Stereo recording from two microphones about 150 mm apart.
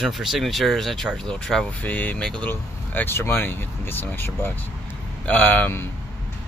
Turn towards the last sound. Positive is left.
turn(degrees=10)  # may be behind; listen again after turning